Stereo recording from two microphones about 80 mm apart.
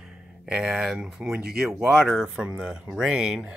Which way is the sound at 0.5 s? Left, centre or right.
Centre.